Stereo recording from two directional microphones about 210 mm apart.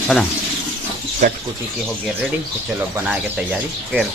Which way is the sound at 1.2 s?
40° right (ahead or behind).